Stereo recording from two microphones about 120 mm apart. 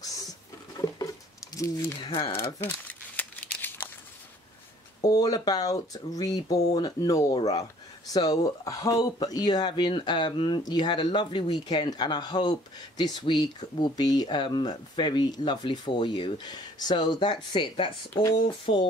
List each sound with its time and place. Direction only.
0.0 s patter: 30° left (ahead or behind)
1.5 s speech: 25° left (ahead or behind)
2.0 s speech: 45° left (ahead or behind)
2.6 s crumpling: 15° left (ahead or behind)
5.0 s speech: 30° left (ahead or behind); by 18.8 s 50° left (ahead or behind)